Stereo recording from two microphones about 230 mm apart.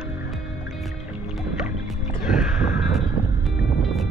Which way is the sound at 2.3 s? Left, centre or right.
Centre.